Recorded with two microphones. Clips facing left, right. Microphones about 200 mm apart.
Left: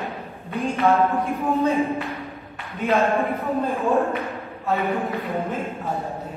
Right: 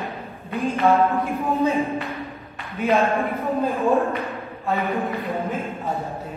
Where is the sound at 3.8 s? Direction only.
Centre (ahead or behind).